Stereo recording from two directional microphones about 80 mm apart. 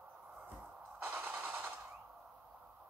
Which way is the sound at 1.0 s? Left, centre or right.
Right.